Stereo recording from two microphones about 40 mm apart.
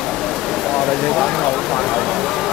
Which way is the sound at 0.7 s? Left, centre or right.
Centre.